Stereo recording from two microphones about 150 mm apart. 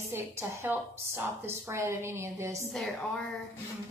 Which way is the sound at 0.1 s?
15° right (ahead or behind).